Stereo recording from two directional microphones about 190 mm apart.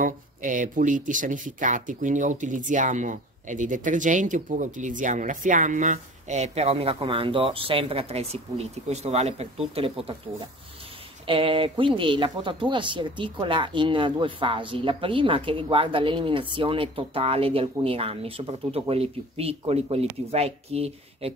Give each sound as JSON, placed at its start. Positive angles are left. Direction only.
{"t": 0.0, "sound": "speech", "side_deg": -45}
{"t": 11.2, "sound": "speech", "side_deg": -30}